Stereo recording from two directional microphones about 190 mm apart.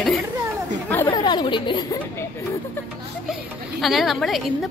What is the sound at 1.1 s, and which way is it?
Speech, 25° left (ahead or behind).